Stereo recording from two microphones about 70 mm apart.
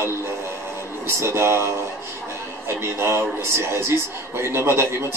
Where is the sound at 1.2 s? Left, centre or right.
Right.